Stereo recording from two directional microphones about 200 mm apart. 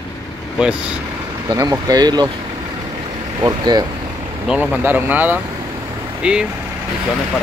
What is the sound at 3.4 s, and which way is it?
Speech, 20° right (ahead or behind).